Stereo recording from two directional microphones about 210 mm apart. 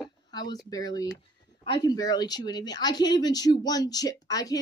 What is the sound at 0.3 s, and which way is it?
Speech, 20° left (ahead or behind).